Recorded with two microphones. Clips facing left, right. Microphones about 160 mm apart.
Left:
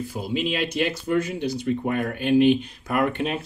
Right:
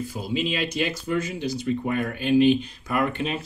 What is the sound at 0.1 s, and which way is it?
Speech, 60° left (ahead or behind).